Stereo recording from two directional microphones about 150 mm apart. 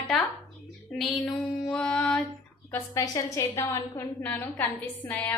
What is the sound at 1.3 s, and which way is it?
Speech, 5° left (ahead or behind).